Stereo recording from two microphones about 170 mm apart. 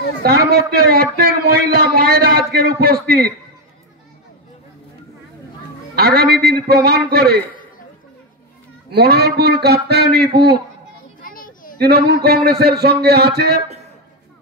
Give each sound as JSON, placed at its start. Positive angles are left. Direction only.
{"t": 0.2, "sound": "a man's voice", "side_deg": -65}
{"t": 5.9, "sound": "a man's voice", "side_deg": -65}
{"t": 8.9, "sound": "a man's voice", "side_deg": -70}
{"t": 11.1, "sound": "a sound", "side_deg": 55}
{"t": 11.8, "sound": "a man's voice", "side_deg": -70}